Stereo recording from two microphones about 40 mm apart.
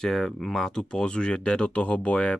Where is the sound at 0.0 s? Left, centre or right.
Centre.